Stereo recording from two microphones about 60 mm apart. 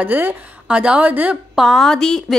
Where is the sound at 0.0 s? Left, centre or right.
Right.